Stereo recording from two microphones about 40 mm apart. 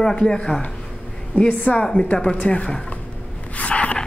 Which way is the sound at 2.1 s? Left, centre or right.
Centre.